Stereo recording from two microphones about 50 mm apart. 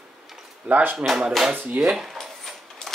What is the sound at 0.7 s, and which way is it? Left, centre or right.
Speech, right.